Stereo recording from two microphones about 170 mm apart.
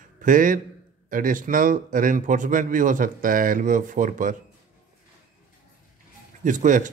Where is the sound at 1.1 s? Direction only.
55° right (ahead or behind).